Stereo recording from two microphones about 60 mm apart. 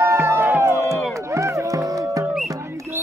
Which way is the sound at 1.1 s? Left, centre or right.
Right.